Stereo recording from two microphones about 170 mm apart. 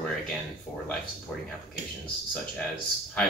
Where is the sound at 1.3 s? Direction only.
5° left (ahead or behind).